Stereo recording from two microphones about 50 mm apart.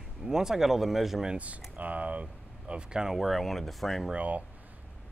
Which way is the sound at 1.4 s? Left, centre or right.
Right.